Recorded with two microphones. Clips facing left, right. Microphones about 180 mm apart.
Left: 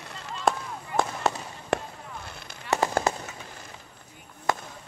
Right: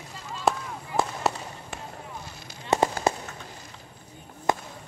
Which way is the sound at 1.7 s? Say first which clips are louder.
Left 14 dB; 65° left (ahead or behind).